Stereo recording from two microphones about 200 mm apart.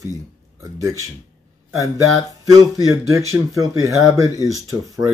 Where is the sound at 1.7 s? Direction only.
15° right (ahead or behind).